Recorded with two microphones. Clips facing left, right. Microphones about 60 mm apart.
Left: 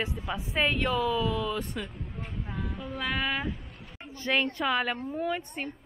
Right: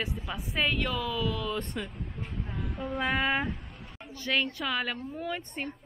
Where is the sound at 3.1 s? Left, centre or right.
Centre.